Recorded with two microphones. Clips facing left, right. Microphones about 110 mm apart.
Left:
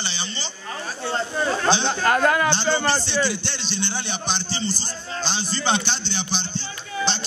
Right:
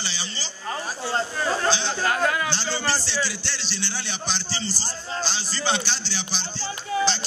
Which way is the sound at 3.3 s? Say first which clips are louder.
Left 4 dB; 20° left (ahead or behind).